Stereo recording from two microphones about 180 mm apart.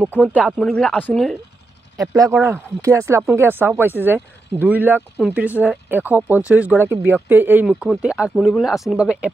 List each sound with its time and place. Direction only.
0.4 s speech: 5° left (ahead or behind)
2.0 s speech: 20° right (ahead or behind)